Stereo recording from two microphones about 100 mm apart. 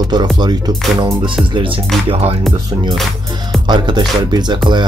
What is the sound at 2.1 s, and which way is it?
Music, 90° right.